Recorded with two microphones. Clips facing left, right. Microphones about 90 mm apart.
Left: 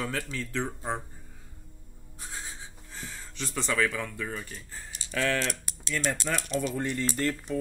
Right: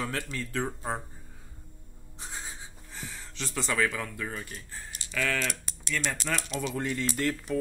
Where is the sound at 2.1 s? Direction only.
20° right (ahead or behind).